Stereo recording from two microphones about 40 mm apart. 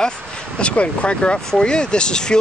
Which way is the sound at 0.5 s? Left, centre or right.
Left.